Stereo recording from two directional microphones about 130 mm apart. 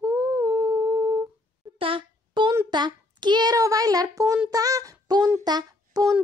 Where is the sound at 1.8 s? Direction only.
45° right (ahead or behind).